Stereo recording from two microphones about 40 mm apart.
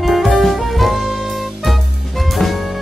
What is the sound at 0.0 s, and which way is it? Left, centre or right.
Music, centre.